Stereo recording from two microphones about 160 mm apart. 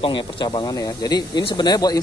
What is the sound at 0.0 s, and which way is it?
Speech, 30° left (ahead or behind).